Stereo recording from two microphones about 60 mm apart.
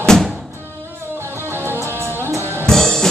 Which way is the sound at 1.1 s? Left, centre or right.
Right.